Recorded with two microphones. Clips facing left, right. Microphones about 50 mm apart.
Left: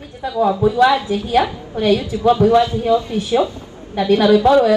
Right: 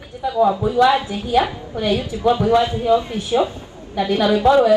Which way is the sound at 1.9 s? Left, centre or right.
Right.